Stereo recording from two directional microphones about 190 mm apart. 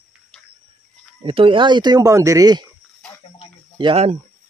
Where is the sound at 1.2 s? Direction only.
30° right (ahead or behind).